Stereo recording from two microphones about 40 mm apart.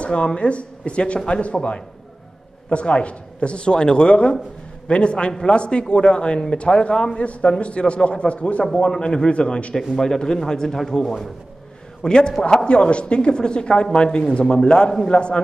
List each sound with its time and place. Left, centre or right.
0.0 s speech: left
7.2 s a man's voice: left
9.9 s speech: centre